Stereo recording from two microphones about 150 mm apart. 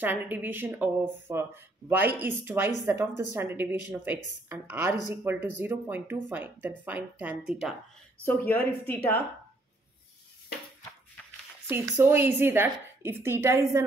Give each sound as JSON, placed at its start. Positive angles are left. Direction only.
{"t": 0.0, "sound": "speech", "side_deg": -10}
{"t": 8.3, "sound": "a woman's voice", "side_deg": 15}
{"t": 11.7, "sound": "speech", "side_deg": -15}